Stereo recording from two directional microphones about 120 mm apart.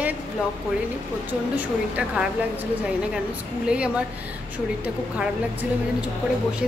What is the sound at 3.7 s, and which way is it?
Speech, 10° right (ahead or behind).